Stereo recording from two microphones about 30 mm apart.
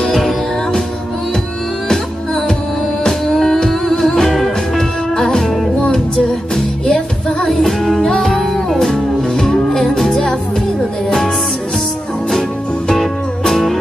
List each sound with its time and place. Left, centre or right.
1.9 s music: centre
7.4 s music: centre
8.9 s music: left
9.8 s music: centre
13.5 s music: centre